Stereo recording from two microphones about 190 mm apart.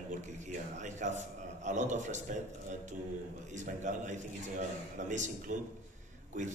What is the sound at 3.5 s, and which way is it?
Speech, 40° right (ahead or behind).